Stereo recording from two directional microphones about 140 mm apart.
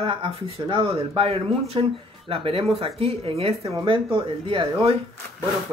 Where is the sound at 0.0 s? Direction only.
40° right (ahead or behind).